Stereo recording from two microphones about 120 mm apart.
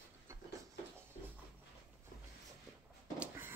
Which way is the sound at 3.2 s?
20° right (ahead or behind).